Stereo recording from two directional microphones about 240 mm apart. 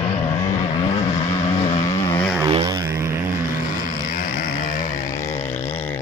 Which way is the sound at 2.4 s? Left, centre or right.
Centre.